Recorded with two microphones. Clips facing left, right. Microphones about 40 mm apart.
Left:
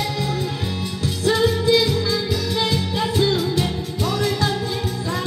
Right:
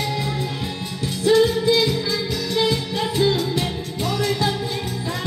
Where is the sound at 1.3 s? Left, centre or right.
Centre.